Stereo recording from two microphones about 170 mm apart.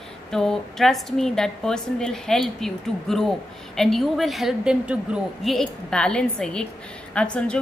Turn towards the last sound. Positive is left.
turn(degrees=5)  # may be behind; listen again after turning